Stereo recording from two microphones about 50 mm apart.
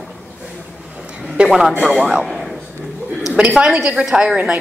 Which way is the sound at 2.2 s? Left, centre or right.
Centre.